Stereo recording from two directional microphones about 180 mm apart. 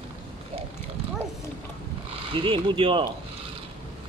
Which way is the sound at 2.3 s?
30° right (ahead or behind).